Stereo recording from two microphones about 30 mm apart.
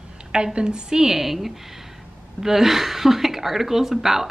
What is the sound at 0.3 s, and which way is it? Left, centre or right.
A woman's voice, right.